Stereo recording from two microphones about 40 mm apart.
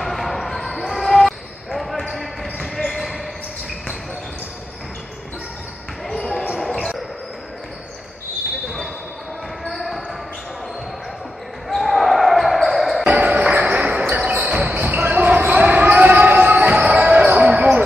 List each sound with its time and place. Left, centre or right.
0.0 s basketball bounce: centre
6.1 s basketball bounce: centre
9.7 s basketball bounce: centre
11.7 s basketball bounce: centre
13.1 s basketball bounce: right